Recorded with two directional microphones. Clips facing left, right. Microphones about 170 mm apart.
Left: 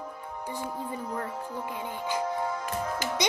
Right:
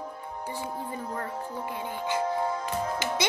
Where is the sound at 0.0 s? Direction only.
10° right (ahead or behind).